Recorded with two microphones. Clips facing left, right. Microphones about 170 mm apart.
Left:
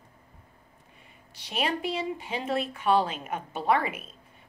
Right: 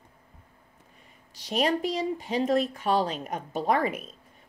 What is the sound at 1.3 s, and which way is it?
Speech, 40° right (ahead or behind).